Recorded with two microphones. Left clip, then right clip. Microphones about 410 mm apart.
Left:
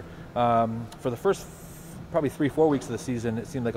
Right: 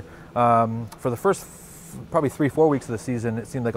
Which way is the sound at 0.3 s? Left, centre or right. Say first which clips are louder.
Right 4 dB; right.